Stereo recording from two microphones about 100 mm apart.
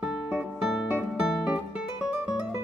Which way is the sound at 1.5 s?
15° right (ahead or behind).